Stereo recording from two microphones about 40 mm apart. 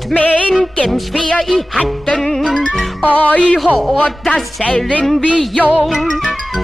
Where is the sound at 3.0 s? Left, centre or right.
Left.